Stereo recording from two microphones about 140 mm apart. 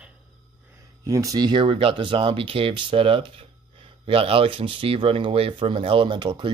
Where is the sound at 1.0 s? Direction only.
25° right (ahead or behind).